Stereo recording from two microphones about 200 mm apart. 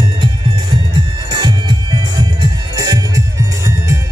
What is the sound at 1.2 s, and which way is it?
Music, 20° right (ahead or behind).